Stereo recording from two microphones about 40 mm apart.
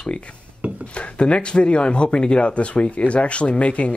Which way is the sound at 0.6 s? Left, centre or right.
Right.